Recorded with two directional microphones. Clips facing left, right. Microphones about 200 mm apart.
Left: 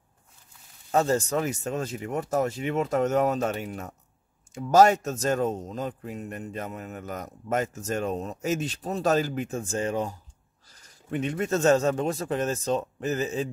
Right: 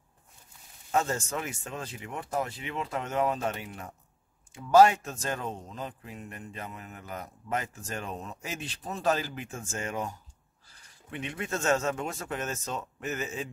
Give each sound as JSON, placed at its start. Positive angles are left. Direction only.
{"t": 0.9, "sound": "a man's voice", "side_deg": 35}